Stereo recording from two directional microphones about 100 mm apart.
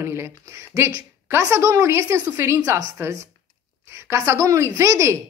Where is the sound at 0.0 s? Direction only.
25° right (ahead or behind).